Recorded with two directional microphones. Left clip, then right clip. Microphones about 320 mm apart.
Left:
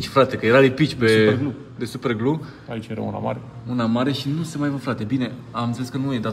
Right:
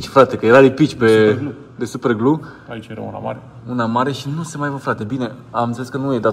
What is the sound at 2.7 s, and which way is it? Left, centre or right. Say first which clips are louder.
Speech: even; left.